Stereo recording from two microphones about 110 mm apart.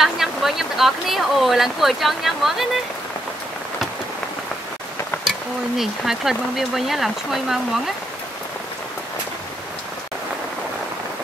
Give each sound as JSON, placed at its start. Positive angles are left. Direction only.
{"t": 0.0, "sound": "speech", "side_deg": 0}
{"t": 5.8, "sound": "speech", "side_deg": -5}